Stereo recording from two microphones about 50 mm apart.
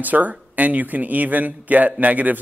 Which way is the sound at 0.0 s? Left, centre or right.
Right.